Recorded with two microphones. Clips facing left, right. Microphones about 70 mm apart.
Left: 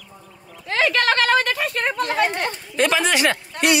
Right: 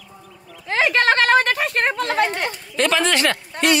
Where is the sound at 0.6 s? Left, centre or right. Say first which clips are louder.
Right 2 dB; right.